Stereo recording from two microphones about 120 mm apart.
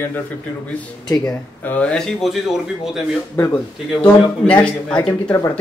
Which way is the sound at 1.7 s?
10° left (ahead or behind).